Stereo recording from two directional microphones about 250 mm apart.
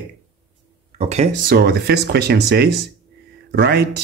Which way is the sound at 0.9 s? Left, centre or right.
Right.